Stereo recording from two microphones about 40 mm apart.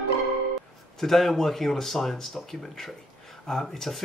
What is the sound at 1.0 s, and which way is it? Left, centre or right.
Speech, centre.